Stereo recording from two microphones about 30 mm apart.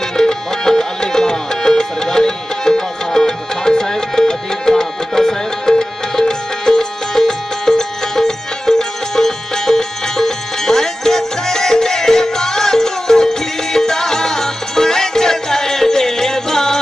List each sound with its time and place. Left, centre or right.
0.2 s music: centre